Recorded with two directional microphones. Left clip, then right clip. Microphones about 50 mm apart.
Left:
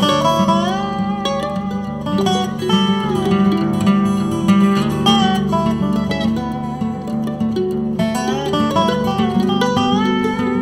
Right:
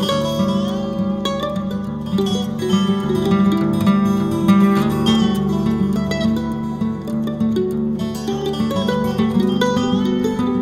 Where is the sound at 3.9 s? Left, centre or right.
Left.